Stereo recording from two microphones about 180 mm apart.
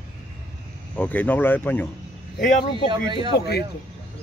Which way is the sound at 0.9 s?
10° left (ahead or behind).